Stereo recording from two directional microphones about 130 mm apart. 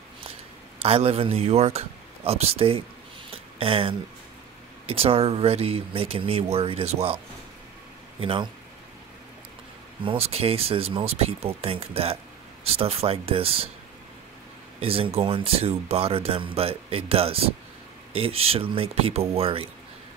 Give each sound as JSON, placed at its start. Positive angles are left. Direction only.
{"t": 0.8, "sound": "speech", "side_deg": -50}
{"t": 3.3, "sound": "a sound", "side_deg": -45}
{"t": 4.8, "sound": "speech", "side_deg": -50}
{"t": 8.2, "sound": "speech", "side_deg": -45}
{"t": 10.0, "sound": "speech", "side_deg": -50}
{"t": 14.8, "sound": "speech", "side_deg": -45}